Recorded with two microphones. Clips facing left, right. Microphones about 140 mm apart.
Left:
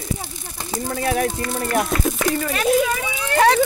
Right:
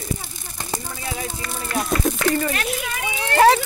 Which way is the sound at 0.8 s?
70° left (ahead or behind).